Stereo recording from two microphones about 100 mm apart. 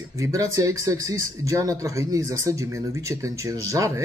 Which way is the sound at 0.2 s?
30° right (ahead or behind).